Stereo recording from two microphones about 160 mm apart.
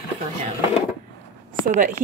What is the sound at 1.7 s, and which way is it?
Speech, 50° right (ahead or behind).